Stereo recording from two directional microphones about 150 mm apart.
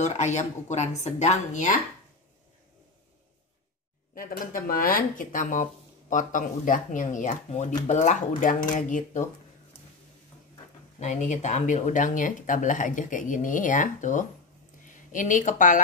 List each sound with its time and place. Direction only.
0.0 s speech: 50° left (ahead or behind)
4.1 s speech: 75° left (ahead or behind); by 9.2 s 55° left (ahead or behind)
11.0 s speech: 50° left (ahead or behind)